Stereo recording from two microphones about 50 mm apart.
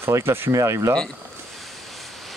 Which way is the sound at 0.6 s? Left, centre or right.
Right.